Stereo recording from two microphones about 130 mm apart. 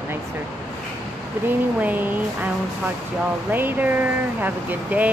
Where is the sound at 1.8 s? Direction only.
15° right (ahead or behind).